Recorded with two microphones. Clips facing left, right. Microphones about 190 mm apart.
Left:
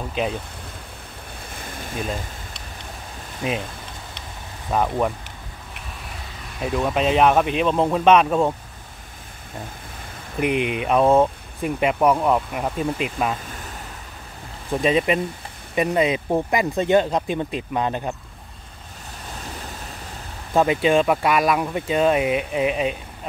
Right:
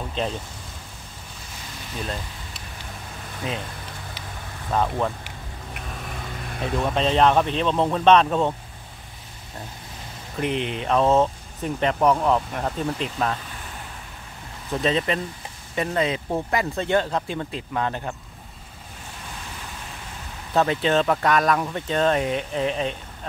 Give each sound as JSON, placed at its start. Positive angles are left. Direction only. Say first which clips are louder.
{"t": 0.1, "sound": "speech", "louder": "left 3 dB", "side_deg": 10}
{"t": 3.4, "sound": "speech", "louder": "left 5 dB", "side_deg": 20}
{"t": 4.6, "sound": "speech", "louder": "left 2 dB", "side_deg": 10}
{"t": 6.6, "sound": "speech", "louder": "left 2 dB", "side_deg": 5}
{"t": 10.4, "sound": "speech", "louder": "left 4 dB", "side_deg": 15}
{"t": 14.7, "sound": "speech", "louder": "left 4 dB", "side_deg": 15}
{"t": 20.5, "sound": "speech", "louder": "left 3 dB", "side_deg": 10}